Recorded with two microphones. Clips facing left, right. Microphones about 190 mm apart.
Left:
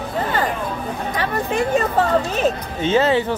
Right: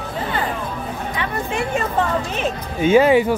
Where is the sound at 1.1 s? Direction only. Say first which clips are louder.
Left 3 dB; 40° left (ahead or behind).